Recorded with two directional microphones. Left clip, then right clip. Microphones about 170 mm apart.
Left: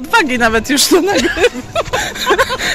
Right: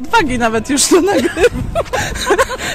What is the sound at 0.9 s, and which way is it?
Speech, 35° right (ahead or behind).